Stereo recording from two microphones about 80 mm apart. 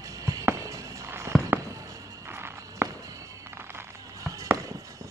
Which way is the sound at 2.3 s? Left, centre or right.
Right.